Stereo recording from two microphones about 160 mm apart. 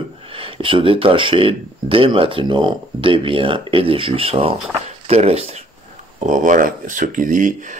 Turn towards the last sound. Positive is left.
turn(degrees=-55)  # may be behind; listen again after turning